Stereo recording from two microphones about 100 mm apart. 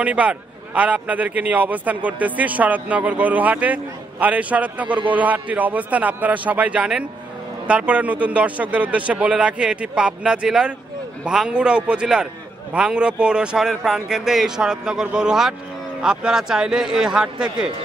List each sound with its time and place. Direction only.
0.0 s a man's voice: 15° right (ahead or behind)